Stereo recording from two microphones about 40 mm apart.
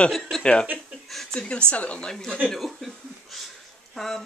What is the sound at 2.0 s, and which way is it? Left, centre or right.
Speech, centre.